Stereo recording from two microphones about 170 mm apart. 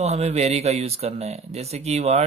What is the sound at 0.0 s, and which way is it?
Speech, 40° right (ahead or behind).